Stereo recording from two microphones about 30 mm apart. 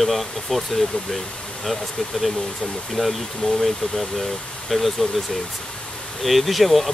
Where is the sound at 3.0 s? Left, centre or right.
Left.